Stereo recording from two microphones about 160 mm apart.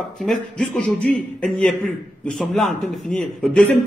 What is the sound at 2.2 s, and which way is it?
Speech, 5° left (ahead or behind).